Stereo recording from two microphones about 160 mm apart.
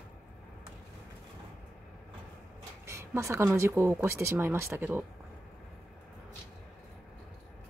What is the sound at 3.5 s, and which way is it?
Speech, 15° right (ahead or behind).